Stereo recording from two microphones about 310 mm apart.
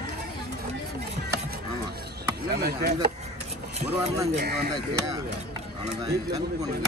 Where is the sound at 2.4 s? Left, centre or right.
Right.